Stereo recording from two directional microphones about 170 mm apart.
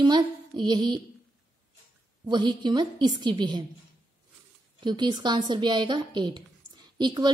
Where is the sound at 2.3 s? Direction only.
25° right (ahead or behind).